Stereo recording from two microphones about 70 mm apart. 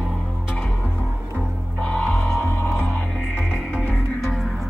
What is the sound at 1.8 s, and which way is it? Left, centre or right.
Music, centre.